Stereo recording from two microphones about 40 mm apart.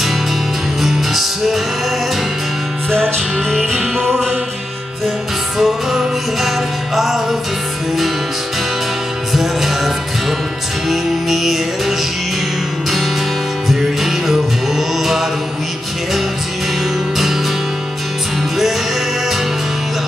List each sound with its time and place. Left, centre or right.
0.8 s music: centre
2.9 s music: left
5.6 s music: centre
9.3 s music: centre
13.7 s music: centre